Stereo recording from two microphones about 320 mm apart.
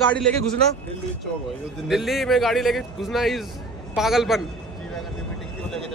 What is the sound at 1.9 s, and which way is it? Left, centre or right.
Speech, centre.